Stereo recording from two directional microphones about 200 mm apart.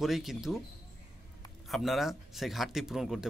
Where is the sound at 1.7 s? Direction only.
Centre (ahead or behind).